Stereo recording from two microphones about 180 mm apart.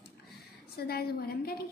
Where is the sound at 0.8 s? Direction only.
60° left (ahead or behind).